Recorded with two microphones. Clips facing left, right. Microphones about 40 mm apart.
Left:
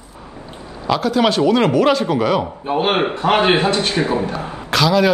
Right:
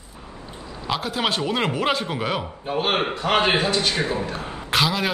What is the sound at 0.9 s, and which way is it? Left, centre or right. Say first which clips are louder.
A man's voice: left 8 dB; centre.